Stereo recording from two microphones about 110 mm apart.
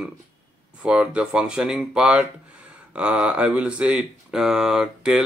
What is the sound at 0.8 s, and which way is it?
Speech, 10° right (ahead or behind).